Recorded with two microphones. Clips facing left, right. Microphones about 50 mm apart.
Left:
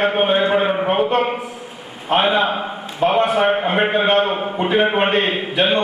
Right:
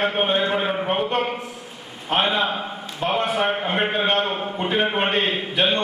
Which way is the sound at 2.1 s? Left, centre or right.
Centre.